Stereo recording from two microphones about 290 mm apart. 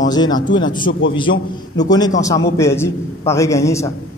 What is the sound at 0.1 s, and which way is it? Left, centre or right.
Speech, centre.